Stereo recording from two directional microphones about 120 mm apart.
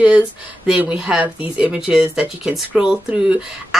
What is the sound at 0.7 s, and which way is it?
Speech, 10° right (ahead or behind).